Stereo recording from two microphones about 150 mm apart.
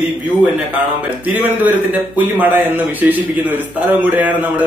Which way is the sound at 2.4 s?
15° right (ahead or behind).